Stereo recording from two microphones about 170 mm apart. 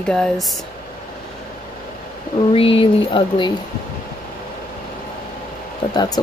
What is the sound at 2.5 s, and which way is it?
Speech, 30° left (ahead or behind).